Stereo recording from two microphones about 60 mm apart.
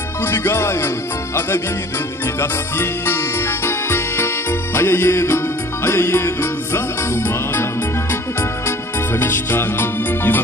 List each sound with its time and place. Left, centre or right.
0.2 s music: left
8.1 s music: left